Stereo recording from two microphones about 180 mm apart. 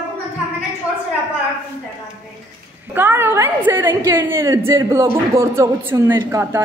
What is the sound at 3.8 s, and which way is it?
A woman's voice, 15° right (ahead or behind).